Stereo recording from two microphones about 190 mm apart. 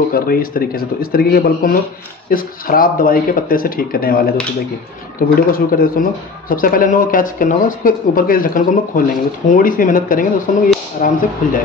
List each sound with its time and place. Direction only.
0.1 s speech: 50° left (ahead or behind)
5.5 s speech: 50° left (ahead or behind)